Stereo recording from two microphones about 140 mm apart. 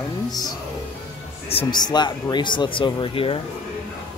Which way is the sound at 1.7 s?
30° left (ahead or behind).